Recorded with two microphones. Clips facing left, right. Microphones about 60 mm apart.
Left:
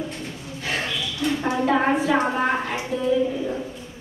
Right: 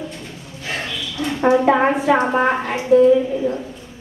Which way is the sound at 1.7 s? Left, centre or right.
Centre.